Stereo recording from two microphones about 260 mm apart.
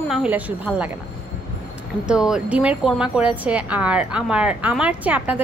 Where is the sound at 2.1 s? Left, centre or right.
Centre.